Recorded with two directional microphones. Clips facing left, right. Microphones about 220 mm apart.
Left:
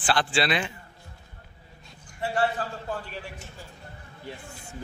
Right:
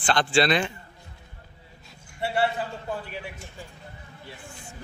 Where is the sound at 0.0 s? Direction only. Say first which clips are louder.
Right 3 dB; 5° left (ahead or behind).